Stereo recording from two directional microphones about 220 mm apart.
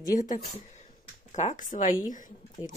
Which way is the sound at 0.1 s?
35° left (ahead or behind).